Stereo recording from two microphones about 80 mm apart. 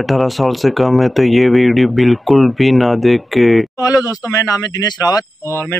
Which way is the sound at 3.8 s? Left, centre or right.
Left.